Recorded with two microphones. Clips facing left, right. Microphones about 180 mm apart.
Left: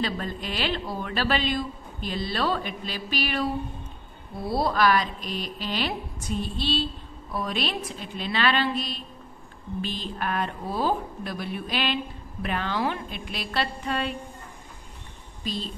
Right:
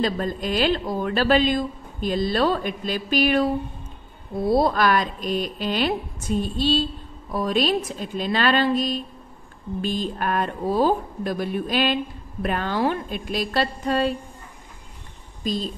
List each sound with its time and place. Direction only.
0.0 s speech: 45° right (ahead or behind)
4.5 s speech: 50° right (ahead or behind)
15.4 s speech: 45° right (ahead or behind)